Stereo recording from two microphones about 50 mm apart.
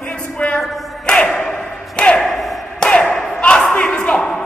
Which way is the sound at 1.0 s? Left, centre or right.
Centre.